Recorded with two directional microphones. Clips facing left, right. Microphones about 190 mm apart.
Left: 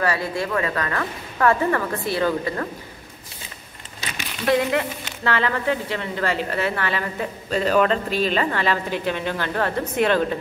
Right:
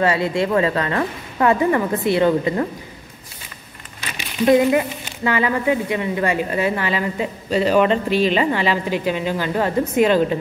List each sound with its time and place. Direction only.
0.0 s a woman's voice: 25° right (ahead or behind)
4.5 s speech: 10° right (ahead or behind)
8.1 s a woman's voice: 40° left (ahead or behind)
8.4 s speech: 10° right (ahead or behind)